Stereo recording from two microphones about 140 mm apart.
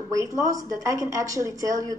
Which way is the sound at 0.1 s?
25° right (ahead or behind).